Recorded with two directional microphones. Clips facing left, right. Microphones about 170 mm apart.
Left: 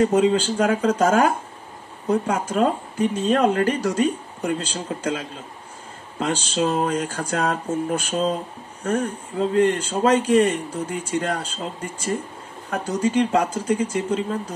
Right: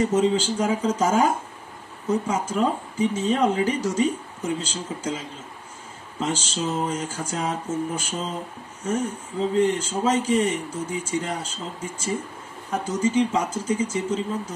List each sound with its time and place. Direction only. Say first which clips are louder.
0.0 s speech: left 3 dB; 65° left (ahead or behind)